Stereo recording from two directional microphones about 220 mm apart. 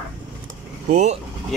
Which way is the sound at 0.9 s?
30° right (ahead or behind).